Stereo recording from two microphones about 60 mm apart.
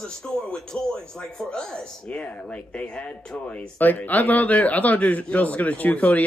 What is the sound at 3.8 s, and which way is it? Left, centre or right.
A man's voice, left.